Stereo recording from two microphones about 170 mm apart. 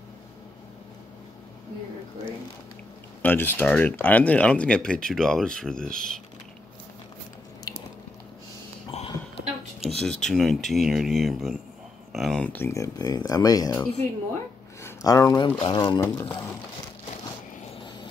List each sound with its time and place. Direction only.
3.2 s speech: 10° left (ahead or behind)
7.7 s squish: 25° left (ahead or behind)
8.9 s a sound: 40° left (ahead or behind)
9.8 s speech: centre (ahead or behind); by 16.5 s 15° left (ahead or behind)